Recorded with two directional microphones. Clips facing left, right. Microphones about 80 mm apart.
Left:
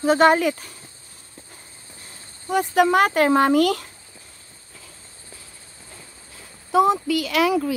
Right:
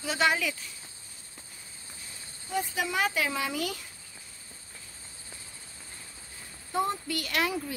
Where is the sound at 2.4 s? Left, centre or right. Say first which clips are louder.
Left 13 dB; left.